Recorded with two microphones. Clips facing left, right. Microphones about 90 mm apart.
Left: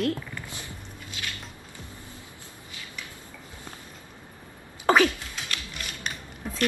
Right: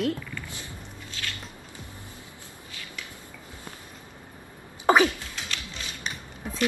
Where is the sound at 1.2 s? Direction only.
15° left (ahead or behind).